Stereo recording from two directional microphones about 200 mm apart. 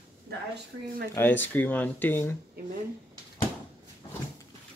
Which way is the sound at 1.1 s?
10° left (ahead or behind).